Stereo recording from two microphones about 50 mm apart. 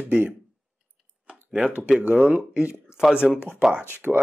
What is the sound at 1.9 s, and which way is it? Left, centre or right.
Speech, right.